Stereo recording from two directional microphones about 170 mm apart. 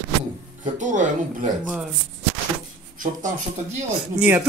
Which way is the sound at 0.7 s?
50° right (ahead or behind).